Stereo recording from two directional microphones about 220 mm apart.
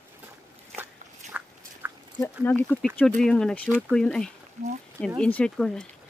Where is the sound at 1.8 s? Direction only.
10° right (ahead or behind).